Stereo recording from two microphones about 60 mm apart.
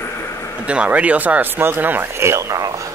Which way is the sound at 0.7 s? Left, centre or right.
Right.